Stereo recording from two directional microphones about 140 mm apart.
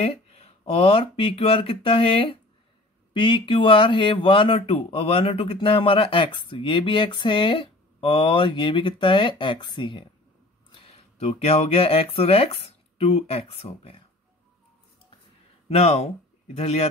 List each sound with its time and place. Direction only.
0.0 s speech: 45° left (ahead or behind)
11.0 s speech: 50° left (ahead or behind)
15.7 s speech: 50° left (ahead or behind)